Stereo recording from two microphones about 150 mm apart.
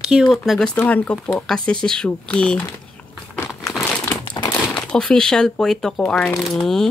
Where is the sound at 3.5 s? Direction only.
Centre (ahead or behind).